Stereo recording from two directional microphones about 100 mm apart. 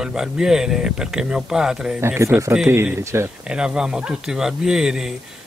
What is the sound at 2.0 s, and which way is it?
Speech, 25° right (ahead or behind).